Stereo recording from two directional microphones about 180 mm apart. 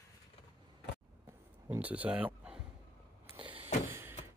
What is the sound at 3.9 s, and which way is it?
Power windows, 15° right (ahead or behind).